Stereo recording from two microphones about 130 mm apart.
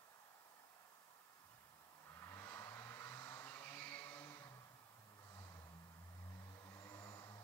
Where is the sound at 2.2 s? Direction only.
20° left (ahead or behind).